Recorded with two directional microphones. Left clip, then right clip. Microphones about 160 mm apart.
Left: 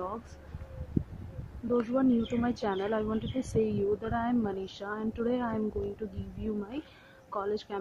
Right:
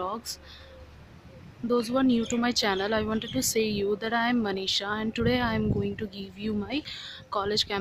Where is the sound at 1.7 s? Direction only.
15° right (ahead or behind).